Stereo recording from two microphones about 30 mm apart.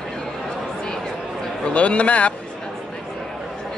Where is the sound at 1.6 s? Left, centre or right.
Left.